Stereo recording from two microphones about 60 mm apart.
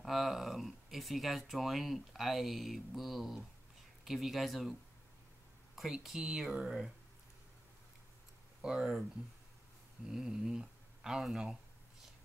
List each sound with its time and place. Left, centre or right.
0.0 s speech: centre
6.0 s speech: centre
8.5 s speech: centre
10.0 s speech: centre